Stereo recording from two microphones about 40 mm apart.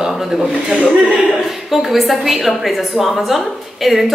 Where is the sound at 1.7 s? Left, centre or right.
Centre.